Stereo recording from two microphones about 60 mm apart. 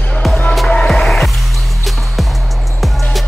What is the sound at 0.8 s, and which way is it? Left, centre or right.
Music, centre.